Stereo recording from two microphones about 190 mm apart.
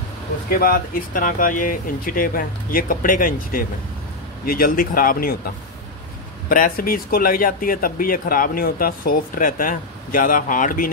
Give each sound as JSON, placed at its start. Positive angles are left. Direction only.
{"t": 0.5, "sound": "speech", "side_deg": 50}
{"t": 6.5, "sound": "speech", "side_deg": 50}